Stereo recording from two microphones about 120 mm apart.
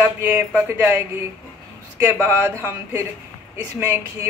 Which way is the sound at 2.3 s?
25° right (ahead or behind).